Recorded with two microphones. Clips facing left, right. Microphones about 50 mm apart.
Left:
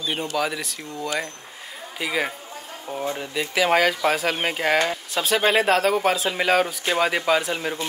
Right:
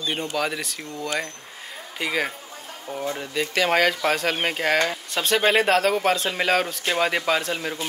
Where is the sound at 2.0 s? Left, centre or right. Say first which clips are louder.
Even; centre.